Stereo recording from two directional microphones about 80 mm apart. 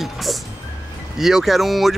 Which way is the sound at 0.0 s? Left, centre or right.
Centre.